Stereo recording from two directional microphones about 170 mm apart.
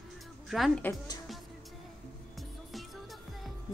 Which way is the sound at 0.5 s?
Centre (ahead or behind).